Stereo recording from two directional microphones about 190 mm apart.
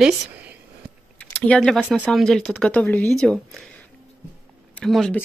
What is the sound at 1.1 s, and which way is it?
Speech, 5° left (ahead or behind).